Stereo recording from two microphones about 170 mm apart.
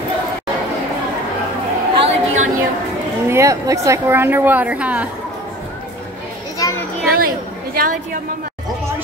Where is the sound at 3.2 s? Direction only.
15° right (ahead or behind).